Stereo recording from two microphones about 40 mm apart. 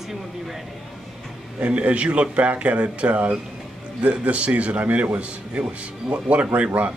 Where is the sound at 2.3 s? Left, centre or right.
Right.